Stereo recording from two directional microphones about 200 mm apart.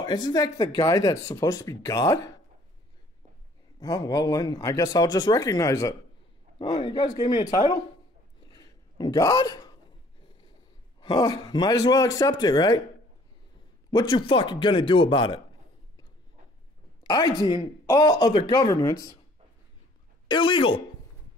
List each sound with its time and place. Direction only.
0.0 s speech: 20° left (ahead or behind)
3.8 s speech: 20° left (ahead or behind)
8.5 s a sound: 20° left (ahead or behind)
11.0 s speech: 20° left (ahead or behind)
13.8 s speech: 20° left (ahead or behind)
17.0 s speech: 20° left (ahead or behind)
20.2 s speech: 25° left (ahead or behind)